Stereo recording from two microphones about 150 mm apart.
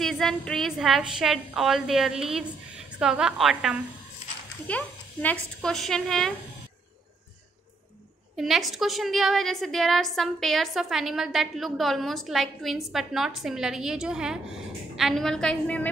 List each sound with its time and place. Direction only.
0.0 s a woman's voice: centre (ahead or behind)
4.6 s a woman's voice: 10° left (ahead or behind)
8.4 s a woman's voice: centre (ahead or behind)